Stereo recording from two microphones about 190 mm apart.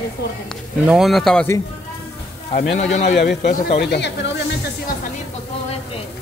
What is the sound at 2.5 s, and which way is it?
Speech, 40° left (ahead or behind).